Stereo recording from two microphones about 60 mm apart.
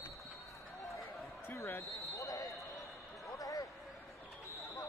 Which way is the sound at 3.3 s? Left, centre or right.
Left.